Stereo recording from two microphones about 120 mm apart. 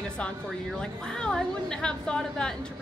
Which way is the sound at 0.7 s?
5° left (ahead or behind).